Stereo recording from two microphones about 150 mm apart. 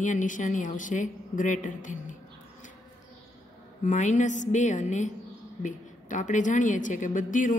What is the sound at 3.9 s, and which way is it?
A woman's voice, 55° left (ahead or behind).